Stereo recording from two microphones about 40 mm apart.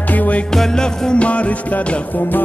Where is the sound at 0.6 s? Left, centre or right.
Centre.